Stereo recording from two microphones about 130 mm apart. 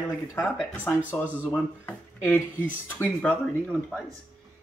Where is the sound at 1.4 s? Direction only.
15° left (ahead or behind).